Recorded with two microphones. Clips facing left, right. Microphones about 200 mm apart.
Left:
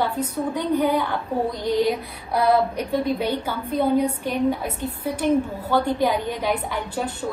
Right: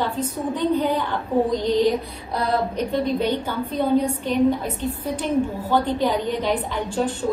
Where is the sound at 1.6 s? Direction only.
10° left (ahead or behind).